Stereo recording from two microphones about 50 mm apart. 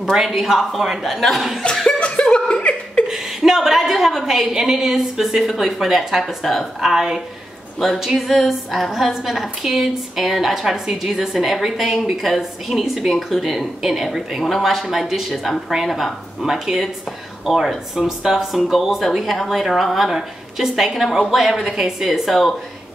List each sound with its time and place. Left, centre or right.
0.0 s a woman's voice: centre
2.0 s laughter: left
3.1 s a woman's voice: centre